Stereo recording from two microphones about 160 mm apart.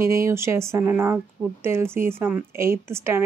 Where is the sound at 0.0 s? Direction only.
15° right (ahead or behind).